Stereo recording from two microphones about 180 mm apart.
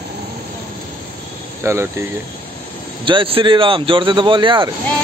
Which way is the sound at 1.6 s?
15° right (ahead or behind).